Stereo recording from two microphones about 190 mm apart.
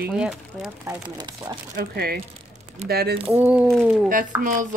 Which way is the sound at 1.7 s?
55° right (ahead or behind).